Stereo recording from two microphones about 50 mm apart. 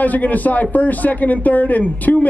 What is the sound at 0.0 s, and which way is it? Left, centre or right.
Speech, left.